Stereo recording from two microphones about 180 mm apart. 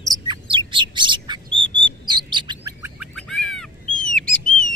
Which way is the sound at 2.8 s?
10° right (ahead or behind).